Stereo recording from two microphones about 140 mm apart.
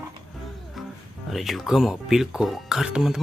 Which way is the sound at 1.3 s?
Centre (ahead or behind).